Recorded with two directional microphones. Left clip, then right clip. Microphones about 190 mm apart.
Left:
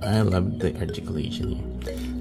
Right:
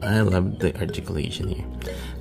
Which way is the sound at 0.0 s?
15° right (ahead or behind).